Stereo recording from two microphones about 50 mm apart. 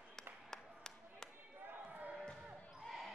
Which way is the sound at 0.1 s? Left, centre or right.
Centre.